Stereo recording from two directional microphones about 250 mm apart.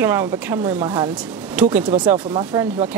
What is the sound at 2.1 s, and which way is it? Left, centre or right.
Speech, centre.